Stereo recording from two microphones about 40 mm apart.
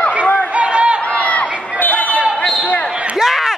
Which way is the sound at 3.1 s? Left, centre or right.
Centre.